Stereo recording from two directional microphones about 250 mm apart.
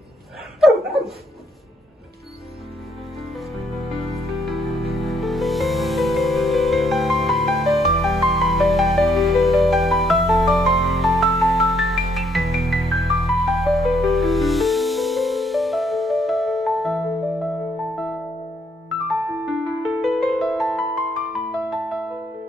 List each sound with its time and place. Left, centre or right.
0.6 s dog: centre
4.1 s music: centre
19.4 s music: centre